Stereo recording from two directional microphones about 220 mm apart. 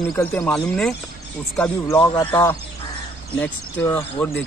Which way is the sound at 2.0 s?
15° left (ahead or behind).